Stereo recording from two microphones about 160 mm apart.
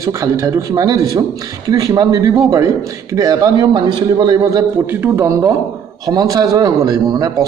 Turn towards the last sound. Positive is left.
turn(degrees=-25)  # may be behind; listen again after turning